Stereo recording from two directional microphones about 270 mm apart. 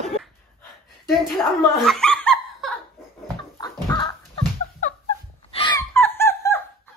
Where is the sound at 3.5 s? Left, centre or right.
Centre.